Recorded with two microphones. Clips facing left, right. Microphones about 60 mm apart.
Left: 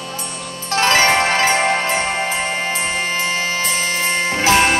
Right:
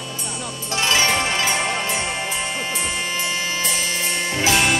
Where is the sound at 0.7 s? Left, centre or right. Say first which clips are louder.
Left 6 dB; left.